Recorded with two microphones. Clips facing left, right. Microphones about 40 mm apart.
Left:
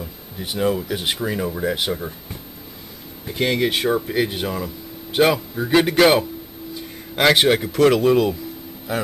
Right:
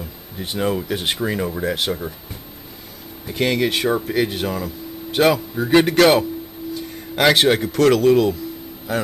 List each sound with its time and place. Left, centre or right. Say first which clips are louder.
0.0 s speech: right 1 dB; centre
3.3 s speech: right 1 dB; centre
4.6 s a sound: right 3 dB; centre
5.5 s speech: right 2 dB; centre
5.9 s speech: right 1 dB; centre